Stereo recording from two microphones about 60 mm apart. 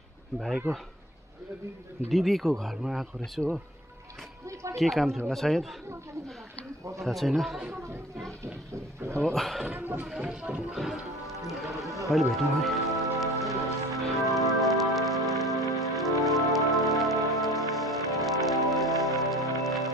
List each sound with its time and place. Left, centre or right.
2.0 s speech: centre
4.7 s speech: centre
7.1 s speech: centre
9.2 s speech: centre
9.8 s speech: right
10.1 s speech: centre
12.1 s music: centre